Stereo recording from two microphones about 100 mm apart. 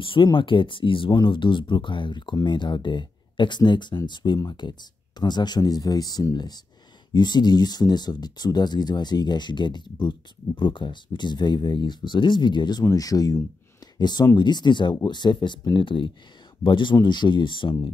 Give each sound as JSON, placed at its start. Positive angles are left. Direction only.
{"t": 0.0, "sound": "speech", "side_deg": 55}
{"t": 12.8, "sound": "speech", "side_deg": 40}